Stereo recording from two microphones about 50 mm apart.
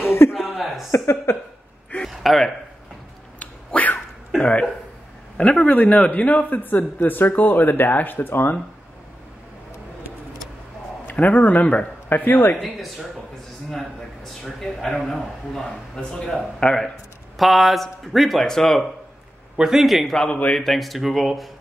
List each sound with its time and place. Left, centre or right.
0.0 s a sound: left
0.5 s a sound: centre
0.9 s a sound: left
2.0 s a sound: centre
3.3 s dog: left
5.4 s speech: left
11.1 s speech: left
12.1 s speech: left
13.7 s a man's voice: centre
17.4 s a man's voice: centre
19.5 s speech: centre
20.2 s speech: left
20.5 s speech: centre